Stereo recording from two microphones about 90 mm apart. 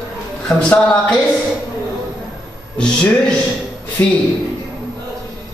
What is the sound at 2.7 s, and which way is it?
Speech, 10° left (ahead or behind).